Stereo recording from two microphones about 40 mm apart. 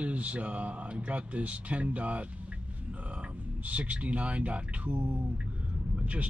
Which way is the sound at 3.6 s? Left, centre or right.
Right.